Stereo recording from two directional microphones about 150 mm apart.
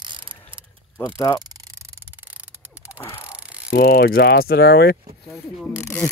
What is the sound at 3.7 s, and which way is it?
Mechanisms, 90° left.